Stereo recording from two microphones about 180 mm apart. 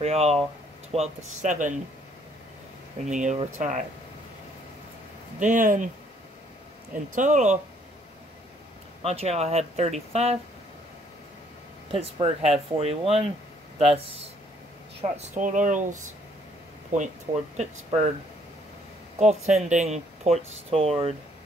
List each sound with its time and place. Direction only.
0.0 s speech: 35° right (ahead or behind)
3.1 s speech: 40° right (ahead or behind)
5.4 s speech: 45° right (ahead or behind)
7.2 s speech: 45° right (ahead or behind)
9.0 s speech: 35° right (ahead or behind)
11.9 s speech: 30° right (ahead or behind)
19.1 s speech: 40° right (ahead or behind)